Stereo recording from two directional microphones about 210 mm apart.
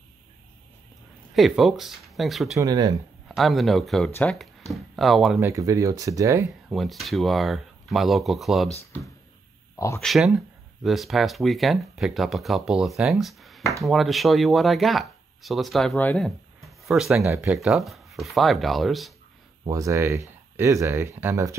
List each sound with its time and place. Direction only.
1.3 s speech: centre (ahead or behind)
2.6 s speech: 20° right (ahead or behind)
3.3 s speech: centre (ahead or behind)
5.5 s speech: 15° right (ahead or behind)
6.7 s speech: centre (ahead or behind)
9.9 s speech: centre (ahead or behind)
17.2 s speech: 15° right (ahead or behind)
17.5 s speech: centre (ahead or behind)
19.6 s speech: 15° right (ahead or behind)